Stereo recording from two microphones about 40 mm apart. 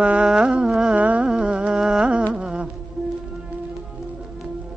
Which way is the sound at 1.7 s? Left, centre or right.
Centre.